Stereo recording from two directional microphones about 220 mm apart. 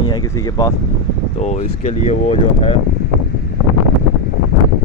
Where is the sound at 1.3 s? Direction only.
30° left (ahead or behind).